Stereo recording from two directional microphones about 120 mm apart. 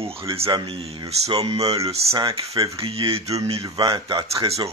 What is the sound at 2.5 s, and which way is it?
Speech, 30° right (ahead or behind).